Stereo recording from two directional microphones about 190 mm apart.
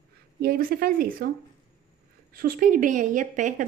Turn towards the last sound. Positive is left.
turn(degrees=-40)  # may be behind; listen again after turning